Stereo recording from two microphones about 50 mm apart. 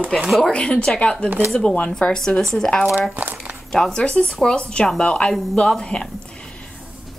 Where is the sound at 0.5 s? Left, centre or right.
Centre.